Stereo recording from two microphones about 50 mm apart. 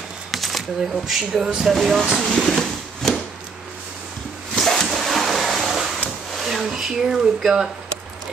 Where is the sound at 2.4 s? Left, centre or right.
Centre.